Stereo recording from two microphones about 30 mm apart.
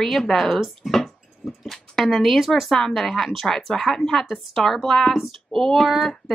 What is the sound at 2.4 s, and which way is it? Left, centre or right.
Speech, centre.